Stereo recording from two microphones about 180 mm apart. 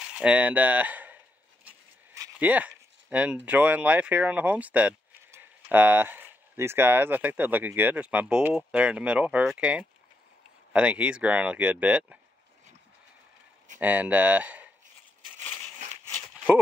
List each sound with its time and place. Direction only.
0.1 s speech: 5° right (ahead or behind)
1.7 s a sound: 20° right (ahead or behind)
2.3 s speech: 10° right (ahead or behind)
13.7 s speech: 10° right (ahead or behind)